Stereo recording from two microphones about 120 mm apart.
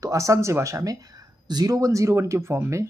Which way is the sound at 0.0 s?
25° right (ahead or behind).